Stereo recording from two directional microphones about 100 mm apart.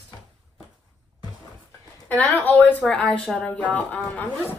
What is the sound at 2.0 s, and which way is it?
Speech, 15° left (ahead or behind).